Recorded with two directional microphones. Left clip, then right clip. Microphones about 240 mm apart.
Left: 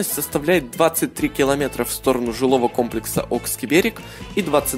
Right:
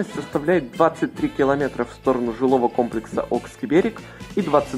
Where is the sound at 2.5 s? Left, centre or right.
Left.